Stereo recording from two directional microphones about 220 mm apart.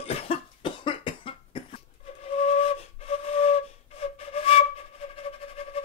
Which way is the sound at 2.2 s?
25° left (ahead or behind).